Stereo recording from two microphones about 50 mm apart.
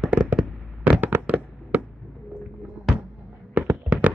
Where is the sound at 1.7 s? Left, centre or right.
Right.